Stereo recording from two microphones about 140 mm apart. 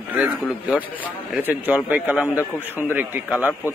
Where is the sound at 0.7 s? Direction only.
10° right (ahead or behind).